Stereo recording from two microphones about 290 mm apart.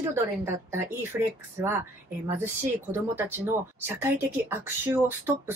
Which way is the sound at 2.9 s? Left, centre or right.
Centre.